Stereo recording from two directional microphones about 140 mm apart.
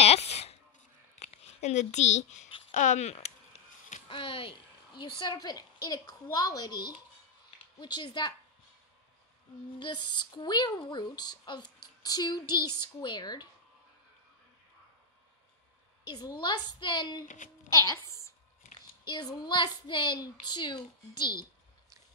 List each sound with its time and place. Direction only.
0.0 s a sound: 50° left (ahead or behind)
1.2 s speech: 50° left (ahead or behind)
4.1 s speech: 40° left (ahead or behind)
9.8 s speech: 35° left (ahead or behind)
16.1 s a woman's voice: 30° left (ahead or behind)
18.8 s speech: 30° left (ahead or behind)